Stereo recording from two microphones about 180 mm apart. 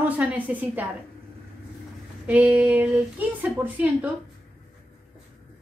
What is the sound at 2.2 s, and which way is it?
Speech, 10° right (ahead or behind).